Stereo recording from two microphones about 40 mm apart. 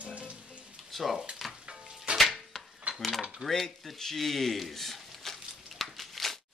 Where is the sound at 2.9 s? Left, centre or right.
Right.